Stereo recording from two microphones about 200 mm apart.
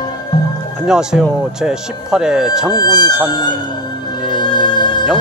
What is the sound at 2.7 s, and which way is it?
Speech, 20° left (ahead or behind).